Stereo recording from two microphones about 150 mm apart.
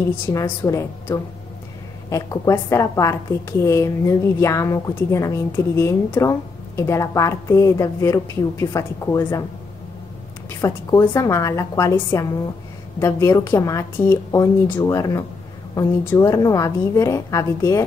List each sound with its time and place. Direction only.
0.3 s a woman's voice: 20° left (ahead or behind)
10.6 s a woman's voice: 20° left (ahead or behind)